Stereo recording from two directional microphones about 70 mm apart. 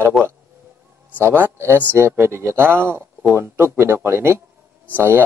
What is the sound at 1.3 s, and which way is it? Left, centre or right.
Speech, right.